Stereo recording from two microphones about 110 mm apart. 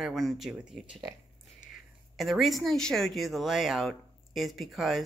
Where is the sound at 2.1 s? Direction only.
Centre (ahead or behind).